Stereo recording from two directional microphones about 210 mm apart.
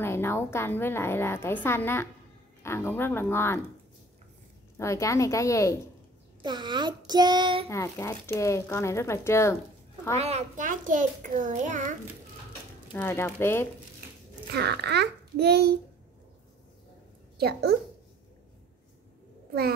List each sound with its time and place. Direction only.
0.0 s a woman's voice: 10° left (ahead or behind)
4.7 s a woman's voice: 15° left (ahead or behind)
6.4 s a sound: 20° right (ahead or behind)
7.7 s a woman's voice: 15° left (ahead or behind)
10.1 s a child's voice: 30° right (ahead or behind)
12.9 s a woman's voice: 10° left (ahead or behind)
14.5 s a child's voice: 50° right (ahead or behind)
17.4 s a child's voice: 50° right (ahead or behind)